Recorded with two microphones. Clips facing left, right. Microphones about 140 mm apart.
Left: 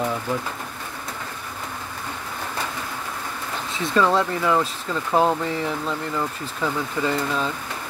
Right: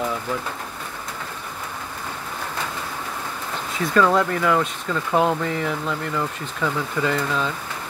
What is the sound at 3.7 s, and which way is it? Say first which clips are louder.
Speech: right 2 dB; 25° left (ahead or behind).